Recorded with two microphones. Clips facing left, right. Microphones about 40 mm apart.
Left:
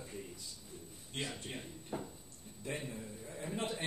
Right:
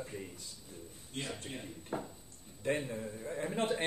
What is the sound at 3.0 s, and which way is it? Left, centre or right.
Speech, right.